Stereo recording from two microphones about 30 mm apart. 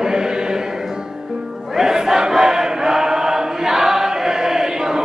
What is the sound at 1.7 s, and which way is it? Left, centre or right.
Chant, centre.